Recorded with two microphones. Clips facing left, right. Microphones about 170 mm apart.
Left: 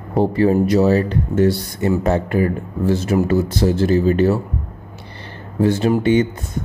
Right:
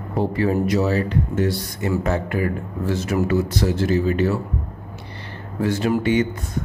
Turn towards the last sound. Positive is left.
turn(degrees=25)  # may be behind; listen again after turning